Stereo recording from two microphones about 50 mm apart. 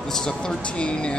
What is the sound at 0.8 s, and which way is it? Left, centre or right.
Speech, left.